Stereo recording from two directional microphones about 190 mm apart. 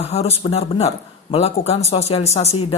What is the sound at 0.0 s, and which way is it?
Speech, 35° left (ahead or behind).